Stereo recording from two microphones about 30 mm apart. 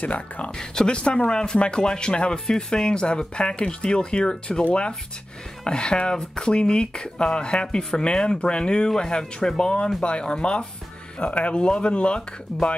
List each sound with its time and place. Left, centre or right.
0.0 s speech: left
0.6 s speech: left
1.3 s speech: left
2.4 s speech: left
11.1 s speech: left